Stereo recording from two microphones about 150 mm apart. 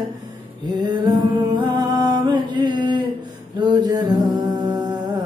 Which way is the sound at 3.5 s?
30° right (ahead or behind).